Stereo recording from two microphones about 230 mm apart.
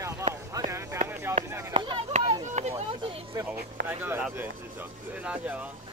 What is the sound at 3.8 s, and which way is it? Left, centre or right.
Speech, centre.